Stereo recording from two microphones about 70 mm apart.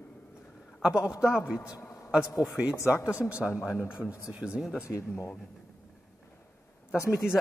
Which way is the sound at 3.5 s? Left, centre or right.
Left.